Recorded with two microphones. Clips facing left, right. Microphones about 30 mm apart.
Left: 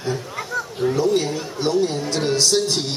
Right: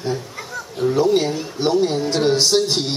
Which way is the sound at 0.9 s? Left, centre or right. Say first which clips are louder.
Right 4 dB; centre.